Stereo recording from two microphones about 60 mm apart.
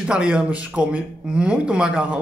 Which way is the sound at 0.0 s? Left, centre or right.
Centre.